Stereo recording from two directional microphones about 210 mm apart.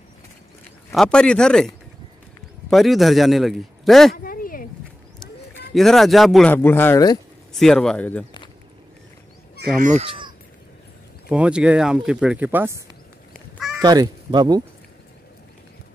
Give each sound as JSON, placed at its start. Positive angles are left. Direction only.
{"t": 0.9, "sound": "speech", "side_deg": 5}
{"t": 2.7, "sound": "speech", "side_deg": 0}
{"t": 4.2, "sound": "a sound", "side_deg": 45}
{"t": 5.8, "sound": "speech", "side_deg": 0}
{"t": 7.5, "sound": "speech", "side_deg": 5}
{"t": 9.8, "sound": "speech", "side_deg": -35}
{"t": 11.2, "sound": "speech", "side_deg": -5}
{"t": 13.3, "sound": "crow", "side_deg": 0}
{"t": 13.7, "sound": "speech", "side_deg": -20}